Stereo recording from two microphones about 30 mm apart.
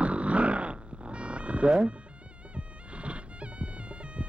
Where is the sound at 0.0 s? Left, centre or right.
Right.